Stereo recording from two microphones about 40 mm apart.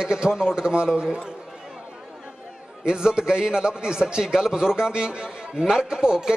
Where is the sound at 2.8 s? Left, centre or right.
Right.